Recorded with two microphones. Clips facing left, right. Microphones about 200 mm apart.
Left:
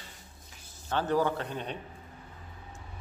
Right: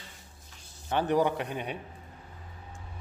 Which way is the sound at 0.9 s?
15° right (ahead or behind).